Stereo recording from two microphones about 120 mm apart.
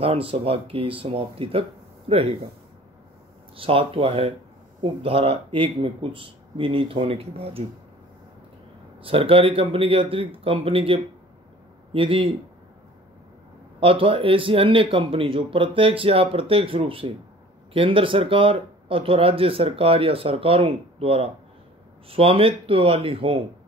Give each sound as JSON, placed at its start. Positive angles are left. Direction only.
{"t": 0.0, "sound": "speech", "side_deg": -50}
{"t": 3.5, "sound": "speech", "side_deg": -50}
{"t": 9.0, "sound": "speech", "side_deg": -50}
{"t": 13.7, "sound": "speech", "side_deg": -50}